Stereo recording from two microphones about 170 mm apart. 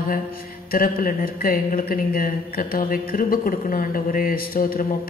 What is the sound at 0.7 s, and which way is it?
Speech, 60° left (ahead or behind).